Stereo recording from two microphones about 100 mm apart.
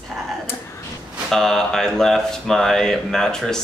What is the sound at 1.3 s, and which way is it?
A woman's voice, 5° left (ahead or behind).